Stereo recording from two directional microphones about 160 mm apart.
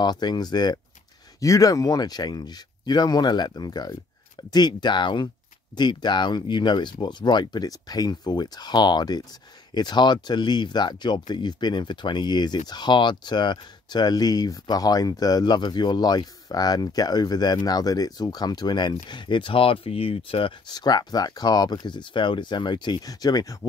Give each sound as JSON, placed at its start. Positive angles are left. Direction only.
{"t": 0.0, "sound": "speech", "side_deg": 25}